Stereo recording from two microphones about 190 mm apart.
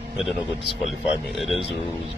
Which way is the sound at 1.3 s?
Centre (ahead or behind).